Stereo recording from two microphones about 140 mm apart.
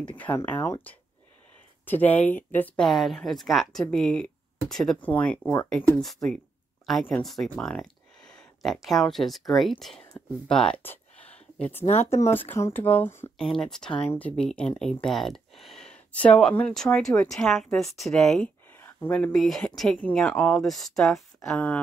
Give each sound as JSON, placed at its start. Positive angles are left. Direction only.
{"t": 0.1, "sound": "speech", "side_deg": 15}
{"t": 7.1, "sound": "speech", "side_deg": 5}
{"t": 11.8, "sound": "speech", "side_deg": 55}
{"t": 12.1, "sound": "speech", "side_deg": 15}
{"t": 13.4, "sound": "speech", "side_deg": 5}